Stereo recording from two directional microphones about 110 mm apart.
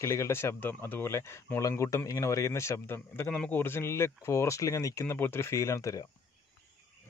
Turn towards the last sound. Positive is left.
turn(degrees=30)  # may be behind; listen again after turning